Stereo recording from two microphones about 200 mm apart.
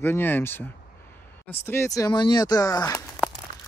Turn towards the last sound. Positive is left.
turn(degrees=15)  # may be behind; listen again after turning